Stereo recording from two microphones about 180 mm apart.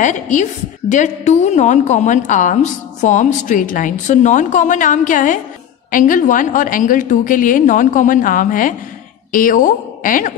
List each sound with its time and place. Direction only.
0.0 s a woman's voice: 45° left (ahead or behind)